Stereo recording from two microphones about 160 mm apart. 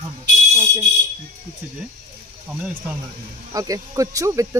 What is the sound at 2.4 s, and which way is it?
Speech, 10° right (ahead or behind).